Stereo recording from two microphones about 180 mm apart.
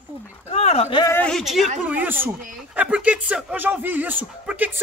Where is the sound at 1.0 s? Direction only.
10° left (ahead or behind).